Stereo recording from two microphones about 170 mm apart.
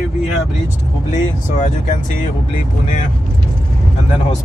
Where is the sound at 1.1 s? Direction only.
45° left (ahead or behind).